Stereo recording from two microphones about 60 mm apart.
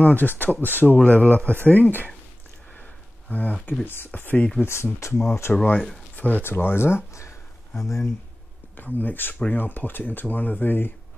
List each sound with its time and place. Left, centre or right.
0.0 s speech: left
2.7 s a sound: left
3.8 s speech: left
4.6 s speech: left
5.5 s speech: left
8.7 s speech: left